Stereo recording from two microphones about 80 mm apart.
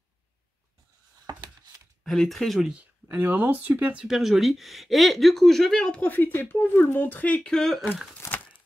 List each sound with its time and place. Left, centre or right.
2.0 s speech: centre
2.7 s speech: centre
4.0 s speech: centre
7.5 s speech: centre